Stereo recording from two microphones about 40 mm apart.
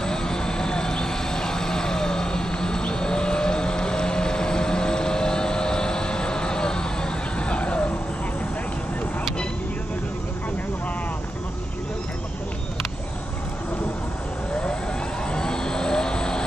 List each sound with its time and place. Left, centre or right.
0.0 s vehicle: centre
14.5 s vehicle: left